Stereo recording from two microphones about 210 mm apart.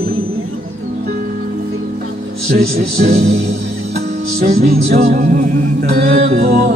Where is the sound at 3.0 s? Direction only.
30° right (ahead or behind).